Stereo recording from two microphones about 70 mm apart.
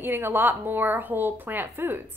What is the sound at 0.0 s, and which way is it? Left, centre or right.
A woman's voice, right.